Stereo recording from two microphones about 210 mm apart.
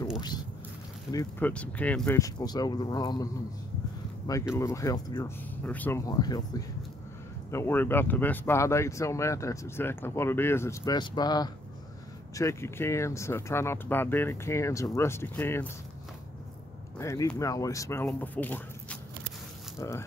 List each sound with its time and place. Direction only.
1.1 s speech: 5° left (ahead or behind)
4.6 s speech: 15° left (ahead or behind)
7.5 s speech: 10° left (ahead or behind)
17.0 s speech: 15° left (ahead or behind)